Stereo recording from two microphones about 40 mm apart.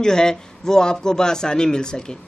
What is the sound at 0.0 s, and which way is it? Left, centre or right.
A man's voice, centre.